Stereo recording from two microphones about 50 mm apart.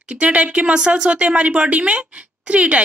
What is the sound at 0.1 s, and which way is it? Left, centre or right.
Speech, right.